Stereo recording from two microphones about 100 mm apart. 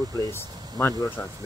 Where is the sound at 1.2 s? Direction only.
20° left (ahead or behind).